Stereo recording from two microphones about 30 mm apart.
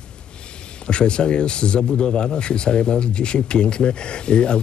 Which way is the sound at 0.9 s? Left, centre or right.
Left.